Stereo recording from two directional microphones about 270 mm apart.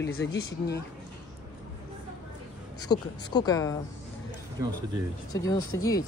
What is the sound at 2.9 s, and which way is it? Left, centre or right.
Speech, centre.